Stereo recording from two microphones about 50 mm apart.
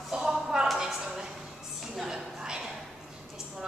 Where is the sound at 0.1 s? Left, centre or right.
Centre.